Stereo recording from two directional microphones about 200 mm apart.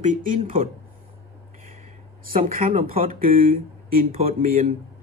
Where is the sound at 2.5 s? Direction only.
45° right (ahead or behind).